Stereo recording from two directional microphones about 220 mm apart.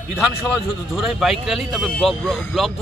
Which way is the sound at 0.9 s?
Centre (ahead or behind).